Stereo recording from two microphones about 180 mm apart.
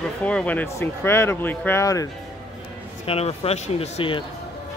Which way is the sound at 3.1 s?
35° left (ahead or behind).